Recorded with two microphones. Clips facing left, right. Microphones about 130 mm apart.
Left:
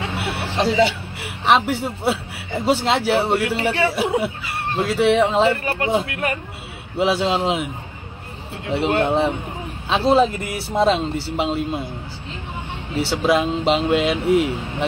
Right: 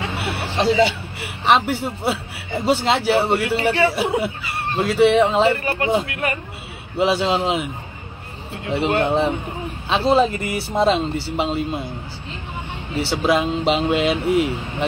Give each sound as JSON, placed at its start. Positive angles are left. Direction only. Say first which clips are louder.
{"t": 0.0, "sound": "a sound", "louder": "even", "side_deg": 0}
{"t": 1.4, "sound": "speech", "louder": "even", "side_deg": 0}
{"t": 8.6, "sound": "speech", "louder": "even", "side_deg": 0}
{"t": 13.2, "sound": "speech", "louder": "even", "side_deg": 0}